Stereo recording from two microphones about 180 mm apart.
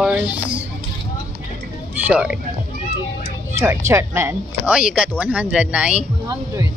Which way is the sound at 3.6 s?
15° right (ahead or behind).